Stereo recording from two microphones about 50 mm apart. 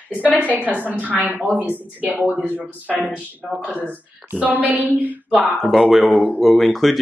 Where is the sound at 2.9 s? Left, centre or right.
Centre.